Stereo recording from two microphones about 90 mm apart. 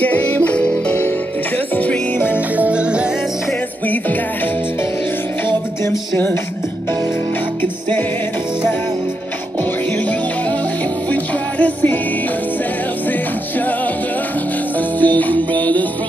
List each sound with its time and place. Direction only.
0.0 s music: 15° left (ahead or behind)
2.3 s music: 15° right (ahead or behind)
3.8 s music: 20° left (ahead or behind)
5.9 s music: 25° left (ahead or behind)
9.6 s music: 15° left (ahead or behind)
13.1 s music: 20° left (ahead or behind)
14.8 s music: 20° left (ahead or behind)